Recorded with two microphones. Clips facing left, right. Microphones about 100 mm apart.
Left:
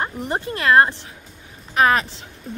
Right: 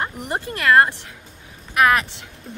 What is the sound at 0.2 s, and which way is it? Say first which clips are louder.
A woman's voice: left 1 dB; 25° left (ahead or behind).